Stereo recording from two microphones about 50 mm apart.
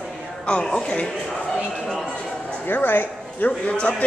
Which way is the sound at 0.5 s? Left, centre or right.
Centre.